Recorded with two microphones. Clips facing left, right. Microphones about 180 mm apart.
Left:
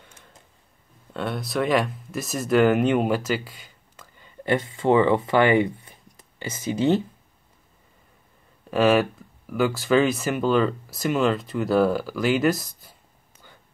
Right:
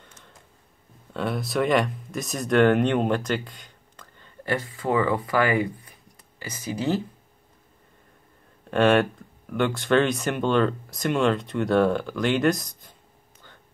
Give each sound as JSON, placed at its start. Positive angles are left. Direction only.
{"t": 0.0, "sound": "a sound", "side_deg": 15}
{"t": 1.1, "sound": "speech", "side_deg": 0}
{"t": 4.5, "sound": "speech", "side_deg": 20}
{"t": 8.6, "sound": "speech", "side_deg": 5}